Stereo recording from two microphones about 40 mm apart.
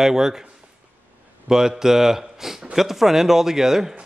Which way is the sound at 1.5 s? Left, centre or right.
Centre.